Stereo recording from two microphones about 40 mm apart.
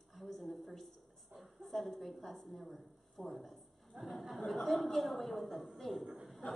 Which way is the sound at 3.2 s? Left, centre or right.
Right.